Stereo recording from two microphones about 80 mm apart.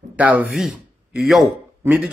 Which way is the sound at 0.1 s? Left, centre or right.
Centre.